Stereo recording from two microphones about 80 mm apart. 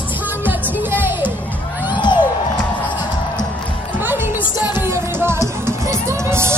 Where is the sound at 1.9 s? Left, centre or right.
Left.